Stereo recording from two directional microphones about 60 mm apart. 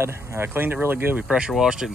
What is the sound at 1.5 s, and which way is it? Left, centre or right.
Speech, centre.